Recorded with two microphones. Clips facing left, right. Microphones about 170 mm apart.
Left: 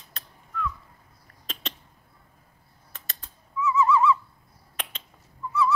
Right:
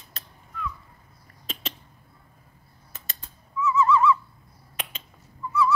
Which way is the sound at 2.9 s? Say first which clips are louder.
Even; centre (ahead or behind).